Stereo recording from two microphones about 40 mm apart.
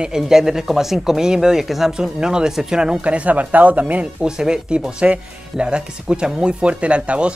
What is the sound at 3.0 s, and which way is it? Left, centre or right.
Speech, right.